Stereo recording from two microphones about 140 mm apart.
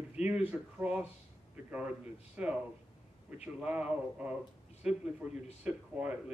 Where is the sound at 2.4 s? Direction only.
10° right (ahead or behind).